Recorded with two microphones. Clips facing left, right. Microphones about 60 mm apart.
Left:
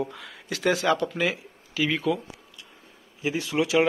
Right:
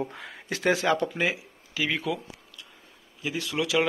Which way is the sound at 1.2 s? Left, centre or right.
Centre.